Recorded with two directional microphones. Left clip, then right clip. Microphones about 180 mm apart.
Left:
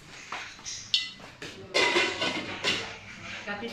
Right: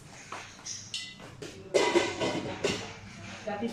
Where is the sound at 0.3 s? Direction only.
Centre (ahead or behind).